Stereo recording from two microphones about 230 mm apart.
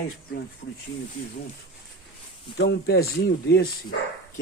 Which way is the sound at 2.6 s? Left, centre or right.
Left.